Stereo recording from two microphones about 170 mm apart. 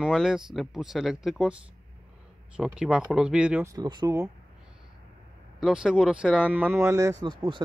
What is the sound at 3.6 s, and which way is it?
Speech, 20° right (ahead or behind).